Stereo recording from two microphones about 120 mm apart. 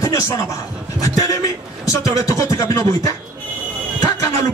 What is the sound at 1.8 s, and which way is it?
Speech, 30° left (ahead or behind).